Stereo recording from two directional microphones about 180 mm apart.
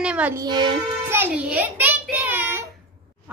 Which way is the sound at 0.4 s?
25° right (ahead or behind).